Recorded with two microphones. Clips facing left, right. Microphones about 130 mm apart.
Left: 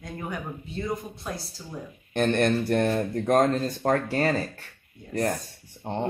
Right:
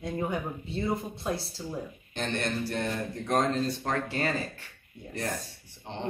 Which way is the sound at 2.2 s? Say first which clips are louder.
Left 8 dB; 55° left (ahead or behind).